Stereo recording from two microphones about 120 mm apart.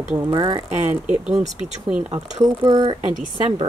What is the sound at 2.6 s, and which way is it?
Speech, 35° right (ahead or behind).